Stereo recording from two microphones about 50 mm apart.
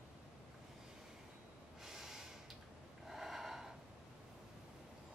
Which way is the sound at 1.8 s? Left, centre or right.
Centre.